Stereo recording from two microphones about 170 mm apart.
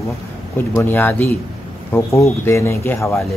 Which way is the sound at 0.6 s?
10° left (ahead or behind).